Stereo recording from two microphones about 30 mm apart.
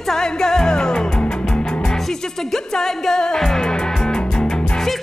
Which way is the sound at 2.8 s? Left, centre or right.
Centre.